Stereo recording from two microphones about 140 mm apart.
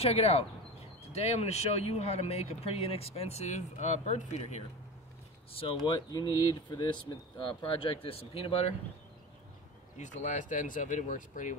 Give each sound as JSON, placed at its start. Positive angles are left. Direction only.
{"t": 0.0, "sound": "speech", "side_deg": 45}
{"t": 5.5, "sound": "speech", "side_deg": 40}
{"t": 5.9, "sound": "speech", "side_deg": 30}
{"t": 9.9, "sound": "speech", "side_deg": 60}